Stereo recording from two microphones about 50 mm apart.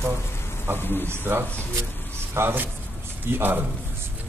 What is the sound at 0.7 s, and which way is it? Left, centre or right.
Speech, left.